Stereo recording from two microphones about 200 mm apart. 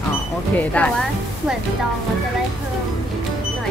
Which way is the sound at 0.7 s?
5° left (ahead or behind).